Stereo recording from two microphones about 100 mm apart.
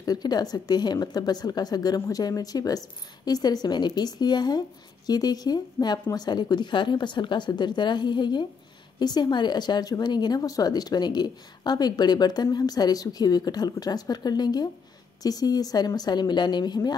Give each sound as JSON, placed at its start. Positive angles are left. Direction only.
{"t": 0.0, "sound": "a woman's voice", "side_deg": 40}